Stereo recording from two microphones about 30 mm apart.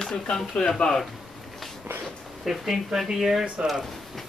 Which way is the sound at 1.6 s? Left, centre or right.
Centre.